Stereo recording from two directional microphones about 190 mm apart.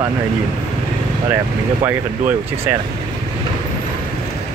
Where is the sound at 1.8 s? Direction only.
10° right (ahead or behind).